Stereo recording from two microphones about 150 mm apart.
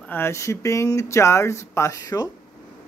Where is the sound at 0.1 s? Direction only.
15° left (ahead or behind).